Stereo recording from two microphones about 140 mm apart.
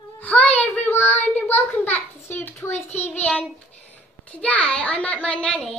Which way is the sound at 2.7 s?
50° left (ahead or behind).